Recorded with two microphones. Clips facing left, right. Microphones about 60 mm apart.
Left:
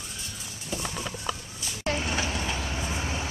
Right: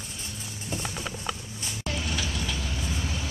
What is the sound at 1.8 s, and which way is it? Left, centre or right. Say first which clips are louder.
Vehicle: left 4 dB; left.